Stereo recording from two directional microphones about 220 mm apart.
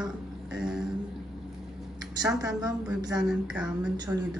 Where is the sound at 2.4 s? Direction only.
15° right (ahead or behind).